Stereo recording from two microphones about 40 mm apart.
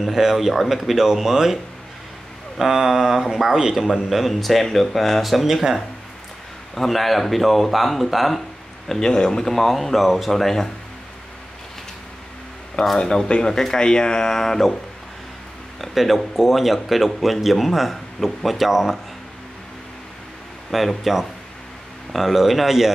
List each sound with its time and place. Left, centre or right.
0.0 s a man's voice: centre
6.7 s speech: centre
8.8 s speech: centre
13.0 s speech: centre
15.8 s a man's voice: centre
21.0 s a man's voice: centre